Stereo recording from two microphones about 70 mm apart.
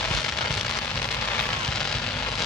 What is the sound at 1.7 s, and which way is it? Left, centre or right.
Vehicle, centre.